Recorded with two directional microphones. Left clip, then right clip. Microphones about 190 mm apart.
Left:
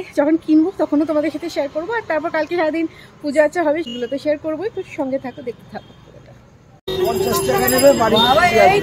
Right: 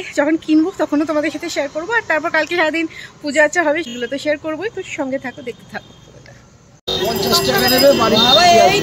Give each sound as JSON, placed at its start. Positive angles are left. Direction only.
{"t": 0.0, "sound": "speech", "side_deg": 5}
{"t": 7.2, "sound": "speech", "side_deg": 15}
{"t": 7.7, "sound": "speech", "side_deg": -15}
{"t": 8.2, "sound": "speech", "side_deg": -35}
{"t": 8.5, "sound": "speech", "side_deg": 0}